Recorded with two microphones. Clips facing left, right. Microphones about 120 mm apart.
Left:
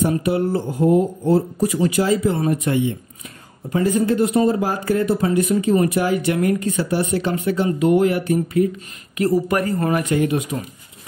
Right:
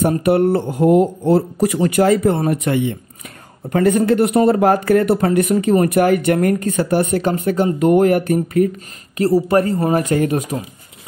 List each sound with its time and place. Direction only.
0.2 s speech: 60° right (ahead or behind)
9.1 s speech: 30° right (ahead or behind)